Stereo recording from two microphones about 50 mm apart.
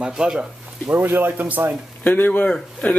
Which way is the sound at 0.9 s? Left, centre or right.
Right.